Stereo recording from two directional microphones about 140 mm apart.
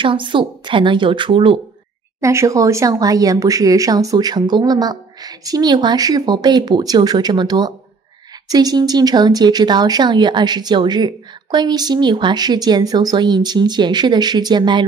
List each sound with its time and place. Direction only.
0.0 s speech: 35° right (ahead or behind)
2.1 s speech: 20° right (ahead or behind)